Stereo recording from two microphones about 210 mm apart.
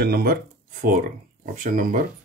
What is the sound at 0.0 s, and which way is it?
Speech, 50° right (ahead or behind).